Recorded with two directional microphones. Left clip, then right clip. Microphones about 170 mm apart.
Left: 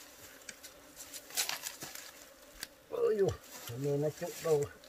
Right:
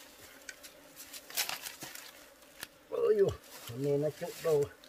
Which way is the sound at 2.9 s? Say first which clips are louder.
Right 3 dB; 15° right (ahead or behind).